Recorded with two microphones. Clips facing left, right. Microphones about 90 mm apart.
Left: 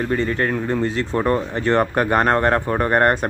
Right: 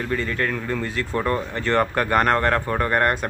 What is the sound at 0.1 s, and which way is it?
Speech, 30° left (ahead or behind).